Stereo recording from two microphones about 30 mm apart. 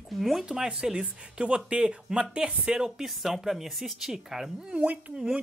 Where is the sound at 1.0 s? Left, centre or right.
Right.